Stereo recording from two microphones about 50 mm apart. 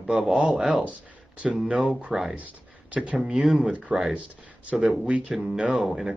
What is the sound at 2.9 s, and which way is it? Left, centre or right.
Speech, right.